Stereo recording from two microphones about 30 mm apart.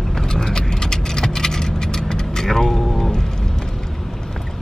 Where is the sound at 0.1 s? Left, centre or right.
Centre.